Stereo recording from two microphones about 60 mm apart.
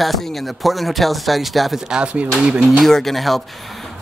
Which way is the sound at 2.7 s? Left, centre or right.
Centre.